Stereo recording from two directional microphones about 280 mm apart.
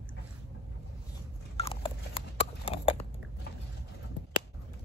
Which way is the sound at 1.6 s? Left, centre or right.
Centre.